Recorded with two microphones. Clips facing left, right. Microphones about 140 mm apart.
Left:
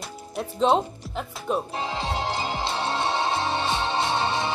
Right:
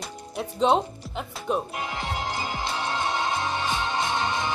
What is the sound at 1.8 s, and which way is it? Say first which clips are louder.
Music: left 3 dB; 25° left (ahead or behind).